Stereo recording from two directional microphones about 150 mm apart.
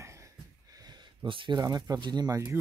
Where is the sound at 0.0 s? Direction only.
20° right (ahead or behind).